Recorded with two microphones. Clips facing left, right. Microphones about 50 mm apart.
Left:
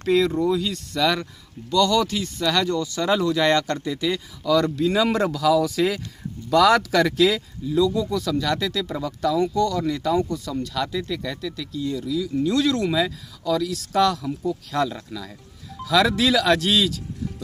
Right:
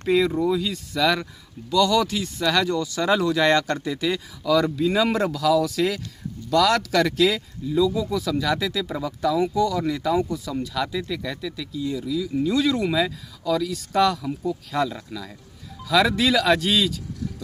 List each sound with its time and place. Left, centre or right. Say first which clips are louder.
0.0 s speech: left 1 dB; centre
6.5 s speech: left 3 dB; centre